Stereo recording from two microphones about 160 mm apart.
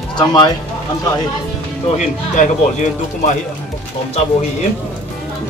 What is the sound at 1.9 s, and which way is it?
Speech, 50° left (ahead or behind).